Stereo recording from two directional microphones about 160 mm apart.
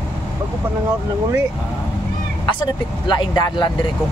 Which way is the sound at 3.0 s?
30° left (ahead or behind).